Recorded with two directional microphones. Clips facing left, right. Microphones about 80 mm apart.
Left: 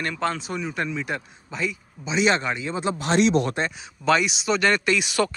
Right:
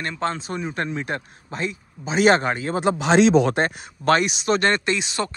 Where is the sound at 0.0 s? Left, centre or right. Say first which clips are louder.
Even; right.